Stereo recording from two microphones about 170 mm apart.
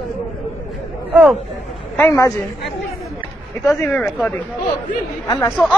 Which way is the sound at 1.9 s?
15° left (ahead or behind).